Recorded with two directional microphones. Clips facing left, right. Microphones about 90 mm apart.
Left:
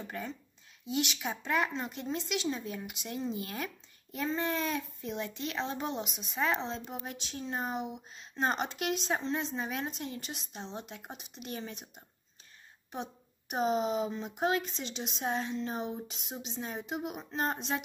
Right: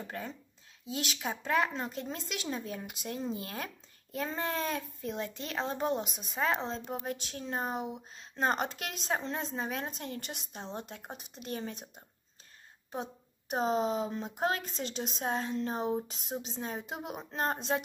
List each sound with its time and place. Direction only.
0.9 s speech: 40° right (ahead or behind)